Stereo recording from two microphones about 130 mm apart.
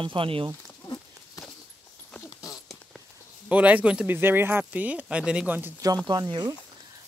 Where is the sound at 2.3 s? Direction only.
30° left (ahead or behind).